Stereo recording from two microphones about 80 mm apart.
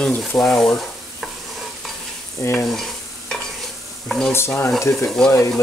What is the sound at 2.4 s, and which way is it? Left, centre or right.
Stir, left.